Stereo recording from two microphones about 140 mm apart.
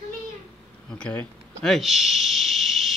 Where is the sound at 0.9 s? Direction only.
10° left (ahead or behind).